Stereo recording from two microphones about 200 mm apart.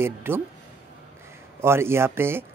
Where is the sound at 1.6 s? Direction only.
10° right (ahead or behind).